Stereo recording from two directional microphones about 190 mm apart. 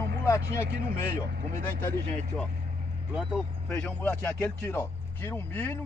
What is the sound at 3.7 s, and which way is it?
Speech, 10° left (ahead or behind).